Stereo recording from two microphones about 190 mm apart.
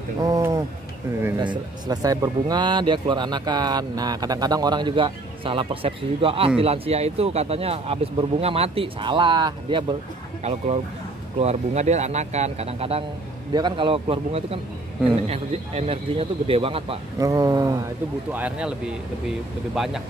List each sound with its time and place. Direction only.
0.2 s speech: 15° right (ahead or behind)
11.3 s speech: 35° right (ahead or behind)
17.2 s speech: 20° right (ahead or behind)
18.3 s speech: 5° right (ahead or behind)